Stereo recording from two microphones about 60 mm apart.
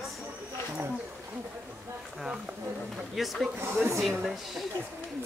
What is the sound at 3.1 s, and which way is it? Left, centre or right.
Speech, centre.